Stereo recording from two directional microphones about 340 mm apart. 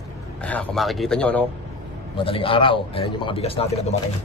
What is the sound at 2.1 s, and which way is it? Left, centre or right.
A man's voice, centre.